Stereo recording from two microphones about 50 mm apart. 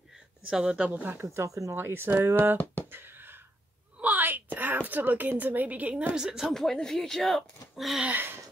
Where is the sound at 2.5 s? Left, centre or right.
Left.